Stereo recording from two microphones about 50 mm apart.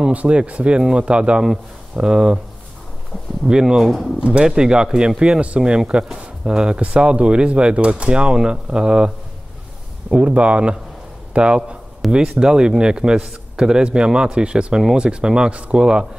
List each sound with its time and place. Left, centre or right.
0.1 s a man's voice: right
3.4 s a man's voice: centre
10.1 s a man's voice: right